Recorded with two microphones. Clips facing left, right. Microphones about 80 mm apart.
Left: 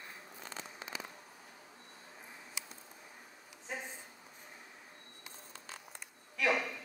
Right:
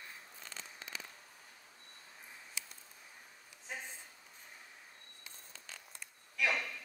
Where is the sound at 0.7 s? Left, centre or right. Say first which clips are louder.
Left 3 dB; centre.